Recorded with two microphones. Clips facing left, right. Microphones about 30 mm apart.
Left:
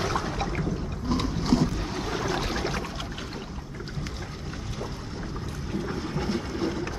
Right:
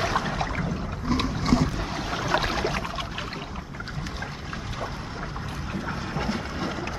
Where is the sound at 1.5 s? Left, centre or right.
Centre.